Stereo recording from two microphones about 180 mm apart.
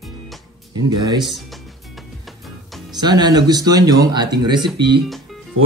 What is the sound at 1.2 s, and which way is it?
Music, centre (ahead or behind).